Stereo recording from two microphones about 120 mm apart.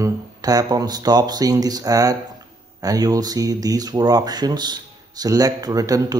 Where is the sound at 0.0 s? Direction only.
30° right (ahead or behind).